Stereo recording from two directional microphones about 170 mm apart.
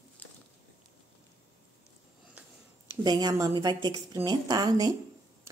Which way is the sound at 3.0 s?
25° right (ahead or behind).